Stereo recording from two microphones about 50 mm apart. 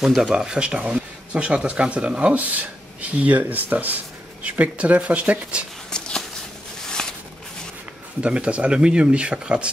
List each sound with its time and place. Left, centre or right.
0.2 s speech: centre
5.9 s a sound: centre
8.2 s speech: right